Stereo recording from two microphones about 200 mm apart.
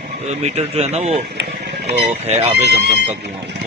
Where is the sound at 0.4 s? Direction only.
30° right (ahead or behind).